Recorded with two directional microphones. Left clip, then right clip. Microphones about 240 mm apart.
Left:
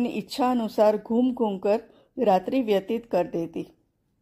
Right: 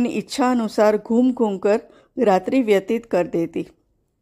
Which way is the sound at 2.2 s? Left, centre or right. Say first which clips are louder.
Right 4 dB; right.